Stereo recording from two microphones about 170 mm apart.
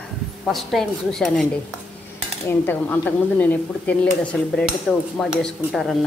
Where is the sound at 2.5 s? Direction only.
10° left (ahead or behind).